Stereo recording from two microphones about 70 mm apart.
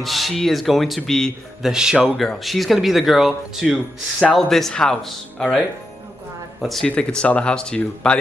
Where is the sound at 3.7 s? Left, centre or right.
Centre.